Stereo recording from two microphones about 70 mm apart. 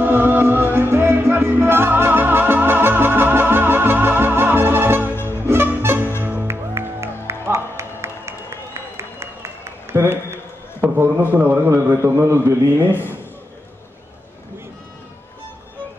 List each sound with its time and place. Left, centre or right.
0.0 s music: right
5.1 s music: left
5.4 s music: right
10.8 s a sound: right
12.0 s a man's voice: right
12.9 s a man's voice: left